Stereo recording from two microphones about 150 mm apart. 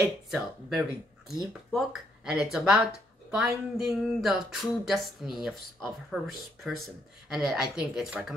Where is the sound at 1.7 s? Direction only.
Centre (ahead or behind).